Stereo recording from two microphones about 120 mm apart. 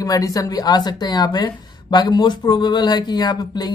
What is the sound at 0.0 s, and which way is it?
Speech, 30° left (ahead or behind).